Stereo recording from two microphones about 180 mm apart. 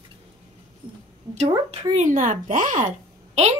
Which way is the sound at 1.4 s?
35° right (ahead or behind).